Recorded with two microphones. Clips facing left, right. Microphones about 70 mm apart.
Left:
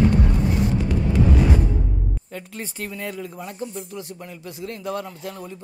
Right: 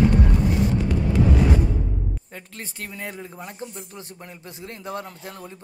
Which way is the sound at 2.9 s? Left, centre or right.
Right.